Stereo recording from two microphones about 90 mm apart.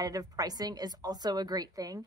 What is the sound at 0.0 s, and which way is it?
Speech, 45° right (ahead or behind).